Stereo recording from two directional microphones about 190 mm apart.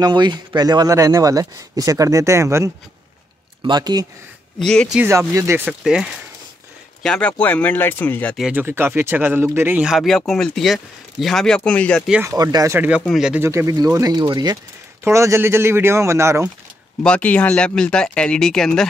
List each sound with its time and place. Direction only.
0.0 s speech: 25° right (ahead or behind)
4.6 s speech: 5° left (ahead or behind)
4.9 s speech: 15° right (ahead or behind)
5.7 s speech: 5° right (ahead or behind)
8.5 s speech: 10° right (ahead or behind); by 12.0 s 5° left (ahead or behind)
12.1 s speech: 15° right (ahead or behind)
17.0 s speech: 5° left (ahead or behind)